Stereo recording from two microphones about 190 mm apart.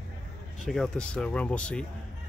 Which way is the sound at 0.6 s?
5° left (ahead or behind).